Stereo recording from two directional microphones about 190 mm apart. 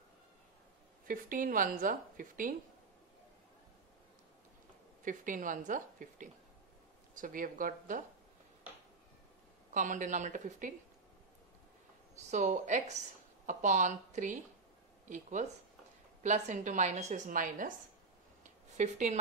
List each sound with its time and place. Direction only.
1.0 s a woman's voice: 45° right (ahead or behind)
5.0 s a woman's voice: 45° right (ahead or behind)
9.8 s a woman's voice: 40° right (ahead or behind)
12.2 s a woman's voice: 40° right (ahead or behind)
18.4 s a sound: 40° right (ahead or behind)